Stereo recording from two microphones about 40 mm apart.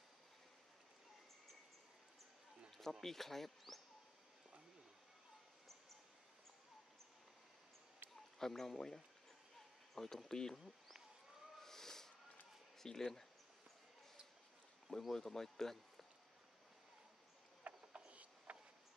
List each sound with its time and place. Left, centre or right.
2.8 s speech: centre
8.4 s speech: centre
11.6 s a sound: centre
12.7 s speech: centre
14.9 s speech: centre
17.6 s mechanisms: right